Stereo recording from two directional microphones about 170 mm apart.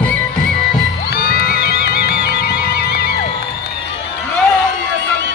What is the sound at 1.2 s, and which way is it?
Music, 60° left (ahead or behind).